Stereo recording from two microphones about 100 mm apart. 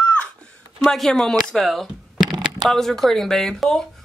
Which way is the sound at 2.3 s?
40° right (ahead or behind).